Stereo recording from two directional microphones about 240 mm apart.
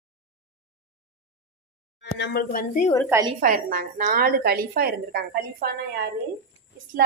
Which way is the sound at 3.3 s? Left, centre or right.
Right.